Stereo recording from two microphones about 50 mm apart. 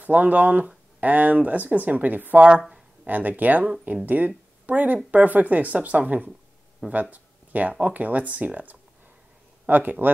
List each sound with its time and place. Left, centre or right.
0.0 s speech: right